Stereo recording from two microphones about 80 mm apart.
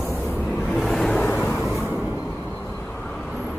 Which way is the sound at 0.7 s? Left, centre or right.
Centre.